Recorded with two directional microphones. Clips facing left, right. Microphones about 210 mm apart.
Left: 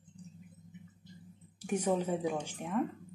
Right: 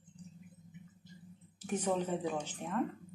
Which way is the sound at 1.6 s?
10° left (ahead or behind).